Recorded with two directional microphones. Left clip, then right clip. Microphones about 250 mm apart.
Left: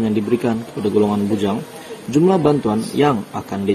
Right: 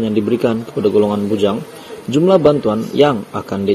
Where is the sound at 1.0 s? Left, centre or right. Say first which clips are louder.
Right 4 dB; centre.